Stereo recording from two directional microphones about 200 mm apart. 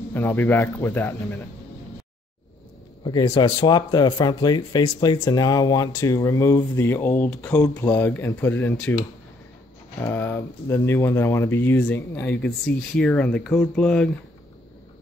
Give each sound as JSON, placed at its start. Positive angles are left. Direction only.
{"t": 0.1, "sound": "speech", "side_deg": 10}
{"t": 3.0, "sound": "speech", "side_deg": 20}
{"t": 10.0, "sound": "speech", "side_deg": 10}